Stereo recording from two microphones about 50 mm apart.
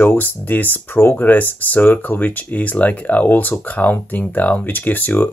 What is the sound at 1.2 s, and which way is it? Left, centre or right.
Speech, left.